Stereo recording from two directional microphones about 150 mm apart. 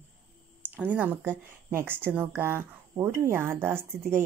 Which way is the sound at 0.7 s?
10° right (ahead or behind).